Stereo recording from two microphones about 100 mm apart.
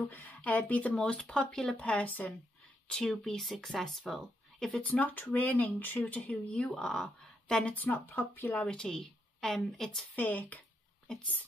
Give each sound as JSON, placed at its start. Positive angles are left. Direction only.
{"t": 0.1, "sound": "a woman's voice", "side_deg": 15}
{"t": 2.9, "sound": "speech", "side_deg": 5}
{"t": 4.8, "sound": "a woman's voice", "side_deg": 15}
{"t": 7.7, "sound": "a woman's voice", "side_deg": 20}
{"t": 10.1, "sound": "a woman's voice", "side_deg": 15}